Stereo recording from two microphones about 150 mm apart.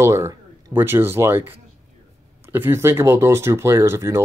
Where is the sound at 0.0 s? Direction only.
20° right (ahead or behind).